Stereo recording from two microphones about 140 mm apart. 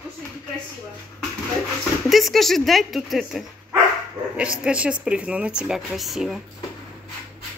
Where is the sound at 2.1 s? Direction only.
Centre (ahead or behind).